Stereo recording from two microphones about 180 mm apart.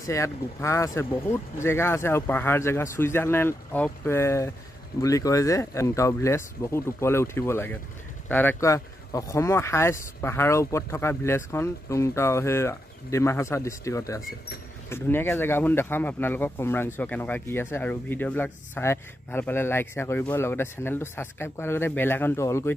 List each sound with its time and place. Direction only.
0.0 s speech: 15° left (ahead or behind)